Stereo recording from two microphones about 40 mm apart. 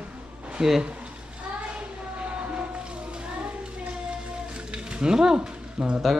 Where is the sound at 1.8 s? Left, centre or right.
Right.